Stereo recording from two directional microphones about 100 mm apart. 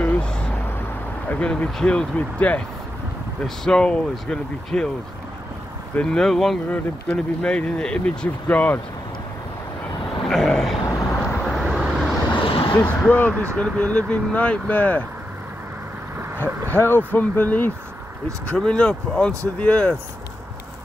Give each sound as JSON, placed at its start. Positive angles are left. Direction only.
{"t": 0.0, "sound": "vehicle", "side_deg": 15}
{"t": 1.3, "sound": "speech", "side_deg": 10}
{"t": 5.9, "sound": "speech", "side_deg": 5}
{"t": 10.2, "sound": "a sound", "side_deg": 0}
{"t": 11.4, "sound": "vehicle", "side_deg": 5}
{"t": 12.3, "sound": "vehicle", "side_deg": 60}
{"t": 12.7, "sound": "speech", "side_deg": 15}
{"t": 16.2, "sound": "vehicle", "side_deg": -20}
{"t": 16.7, "sound": "speech", "side_deg": 20}